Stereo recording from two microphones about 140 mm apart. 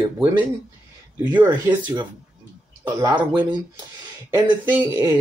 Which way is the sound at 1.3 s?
10° right (ahead or behind).